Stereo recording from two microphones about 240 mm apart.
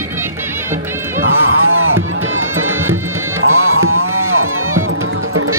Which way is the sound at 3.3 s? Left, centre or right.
Right.